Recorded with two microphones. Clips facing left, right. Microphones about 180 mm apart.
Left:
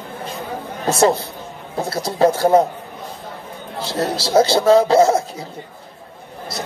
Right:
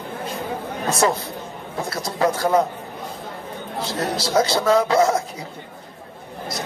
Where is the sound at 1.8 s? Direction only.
30° left (ahead or behind).